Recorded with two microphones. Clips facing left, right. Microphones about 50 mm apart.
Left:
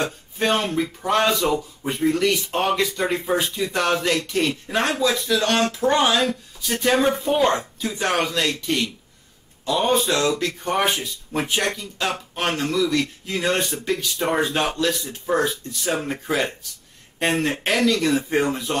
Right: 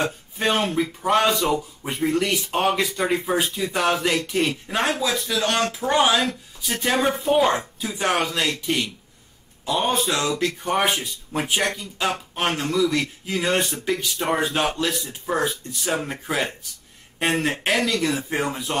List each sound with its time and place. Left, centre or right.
0.0 s speech: centre
14.7 s speech: centre
15.2 s speech: centre